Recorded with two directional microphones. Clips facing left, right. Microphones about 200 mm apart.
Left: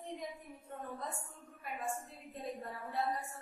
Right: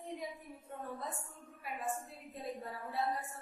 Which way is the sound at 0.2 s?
5° right (ahead or behind).